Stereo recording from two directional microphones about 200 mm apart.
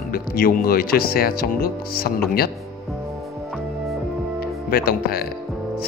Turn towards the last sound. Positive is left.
turn(degrees=50)  # may be behind; listen again after turning